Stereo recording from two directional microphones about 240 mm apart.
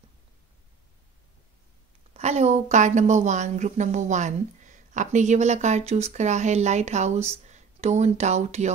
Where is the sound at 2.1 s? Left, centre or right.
Right.